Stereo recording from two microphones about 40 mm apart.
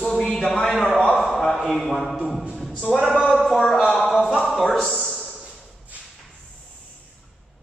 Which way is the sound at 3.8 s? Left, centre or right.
Centre.